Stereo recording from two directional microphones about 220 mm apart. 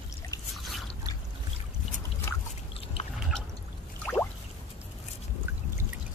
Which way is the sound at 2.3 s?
15° left (ahead or behind).